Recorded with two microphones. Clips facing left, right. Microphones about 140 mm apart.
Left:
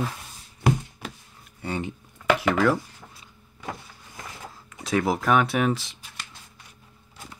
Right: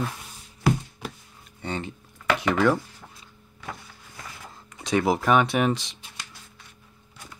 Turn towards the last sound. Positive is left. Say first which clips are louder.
# even
turn(degrees=0)  # may be behind; listen again after turning